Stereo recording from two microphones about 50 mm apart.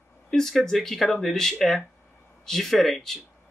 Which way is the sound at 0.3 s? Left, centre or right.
Centre.